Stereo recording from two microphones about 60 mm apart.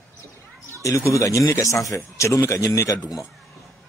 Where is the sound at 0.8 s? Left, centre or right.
Left.